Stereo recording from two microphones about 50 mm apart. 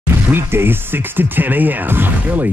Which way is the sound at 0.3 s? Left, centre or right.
Right.